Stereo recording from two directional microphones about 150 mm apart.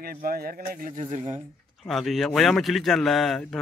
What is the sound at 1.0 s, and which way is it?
Speech, 50° right (ahead or behind).